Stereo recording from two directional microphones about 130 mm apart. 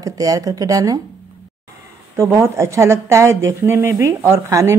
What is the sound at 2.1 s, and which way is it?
A woman's voice, 20° right (ahead or behind).